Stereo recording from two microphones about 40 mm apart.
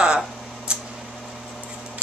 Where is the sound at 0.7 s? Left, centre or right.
Right.